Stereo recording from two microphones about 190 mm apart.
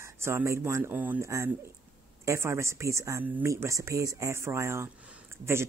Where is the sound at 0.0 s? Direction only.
15° right (ahead or behind).